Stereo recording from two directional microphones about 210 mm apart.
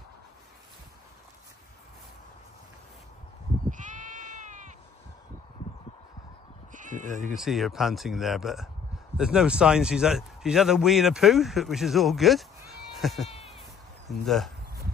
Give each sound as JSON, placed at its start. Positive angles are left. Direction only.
{"t": 3.7, "sound": "sheep", "side_deg": -35}
{"t": 6.7, "sound": "speech", "side_deg": -35}
{"t": 7.3, "sound": "speech", "side_deg": 0}